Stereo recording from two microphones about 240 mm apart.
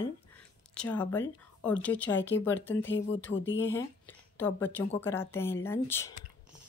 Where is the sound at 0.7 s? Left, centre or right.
Centre.